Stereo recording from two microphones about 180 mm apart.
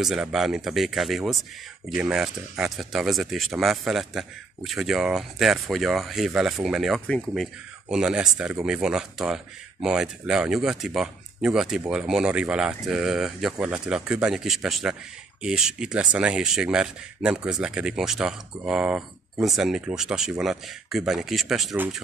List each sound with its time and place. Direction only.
0.0 s speech: centre (ahead or behind)